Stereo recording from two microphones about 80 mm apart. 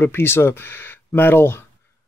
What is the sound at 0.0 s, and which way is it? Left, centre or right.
Speech, left.